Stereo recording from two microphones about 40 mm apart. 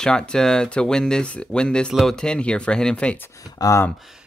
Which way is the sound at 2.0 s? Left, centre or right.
Centre.